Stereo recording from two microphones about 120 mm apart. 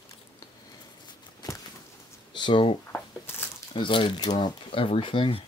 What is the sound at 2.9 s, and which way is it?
Shuffling cards, 15° left (ahead or behind).